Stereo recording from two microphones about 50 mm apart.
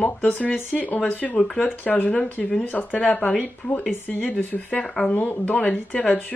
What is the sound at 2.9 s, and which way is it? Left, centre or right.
Speech, left.